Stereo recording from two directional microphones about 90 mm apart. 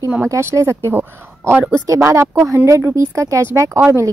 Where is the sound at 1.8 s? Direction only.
35° right (ahead or behind).